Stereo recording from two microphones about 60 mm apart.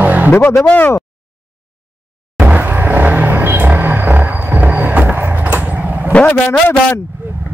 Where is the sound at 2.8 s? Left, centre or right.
Right.